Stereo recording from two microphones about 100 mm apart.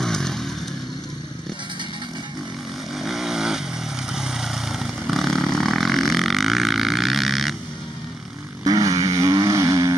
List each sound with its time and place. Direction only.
0.0 s vehicle: 5° left (ahead or behind)
3.0 s vehicle: 5° right (ahead or behind)
8.6 s vehicle: 40° right (ahead or behind)